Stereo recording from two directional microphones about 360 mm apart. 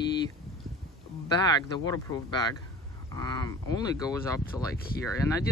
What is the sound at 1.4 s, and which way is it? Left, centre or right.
Speech, centre.